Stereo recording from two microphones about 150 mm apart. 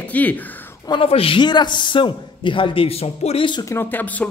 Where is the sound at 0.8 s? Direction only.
35° left (ahead or behind).